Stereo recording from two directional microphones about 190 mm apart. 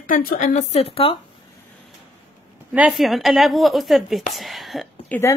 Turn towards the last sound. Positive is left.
turn(degrees=0)  # may be behind; listen again after turning